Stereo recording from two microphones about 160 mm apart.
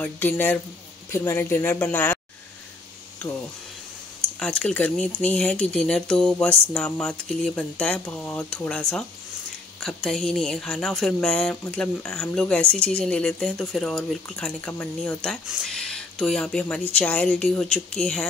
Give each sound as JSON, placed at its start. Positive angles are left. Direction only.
{"t": 0.0, "sound": "speech", "side_deg": 10}
{"t": 4.4, "sound": "speech", "side_deg": 5}